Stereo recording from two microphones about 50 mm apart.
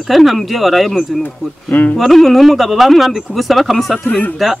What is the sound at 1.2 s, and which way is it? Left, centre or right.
Speech, left.